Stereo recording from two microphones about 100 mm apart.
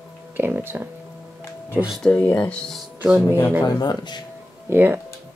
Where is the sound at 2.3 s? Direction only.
15° left (ahead or behind).